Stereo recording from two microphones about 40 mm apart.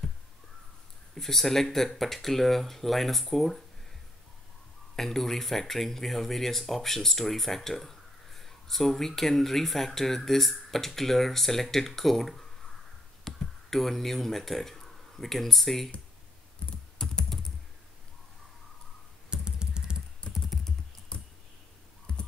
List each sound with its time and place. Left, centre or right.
1.1 s speech: centre
4.9 s speech: centre
17.0 s typing: centre
19.3 s computer keyboard: centre
20.2 s typing: left
22.1 s typing: left